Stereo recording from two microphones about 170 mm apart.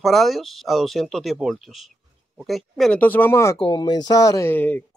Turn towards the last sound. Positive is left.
turn(degrees=10)  # may be behind; listen again after turning